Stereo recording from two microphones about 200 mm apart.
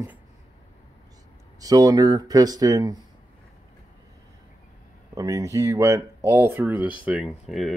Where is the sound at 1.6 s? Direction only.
20° right (ahead or behind).